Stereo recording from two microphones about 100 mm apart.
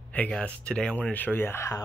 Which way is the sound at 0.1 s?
10° left (ahead or behind).